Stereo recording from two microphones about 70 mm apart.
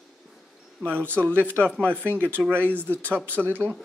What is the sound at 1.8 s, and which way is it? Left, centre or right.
Speech, left.